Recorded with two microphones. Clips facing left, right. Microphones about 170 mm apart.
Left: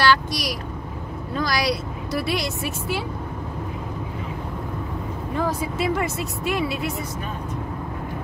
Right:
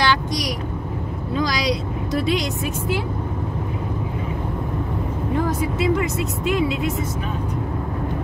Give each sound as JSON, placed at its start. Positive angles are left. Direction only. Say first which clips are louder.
{"t": 0.0, "sound": "vehicle", "louder": "left 1 dB", "side_deg": -20}
{"t": 1.3, "sound": "speech", "louder": "right 1 dB", "side_deg": -20}
{"t": 5.5, "sound": "speech", "louder": "right 3 dB", "side_deg": -20}